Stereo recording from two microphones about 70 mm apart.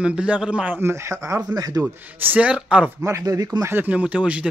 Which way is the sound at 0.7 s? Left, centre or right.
Right.